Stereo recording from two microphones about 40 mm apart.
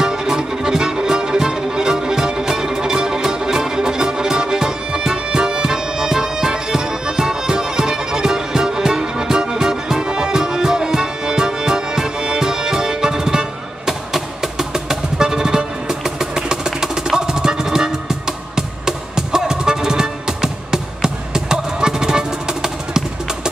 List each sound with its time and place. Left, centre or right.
0.0 s music: centre